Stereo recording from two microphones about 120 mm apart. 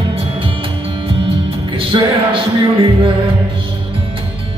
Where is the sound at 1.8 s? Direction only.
45° right (ahead or behind).